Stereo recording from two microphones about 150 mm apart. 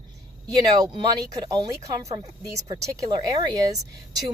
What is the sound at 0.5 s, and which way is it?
Speech, 25° right (ahead or behind).